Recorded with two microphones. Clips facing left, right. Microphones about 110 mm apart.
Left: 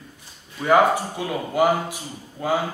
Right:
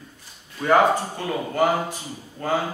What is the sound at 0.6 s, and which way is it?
A man's voice, 5° left (ahead or behind).